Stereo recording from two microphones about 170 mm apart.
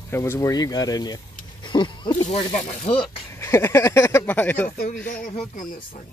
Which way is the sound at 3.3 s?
15° left (ahead or behind).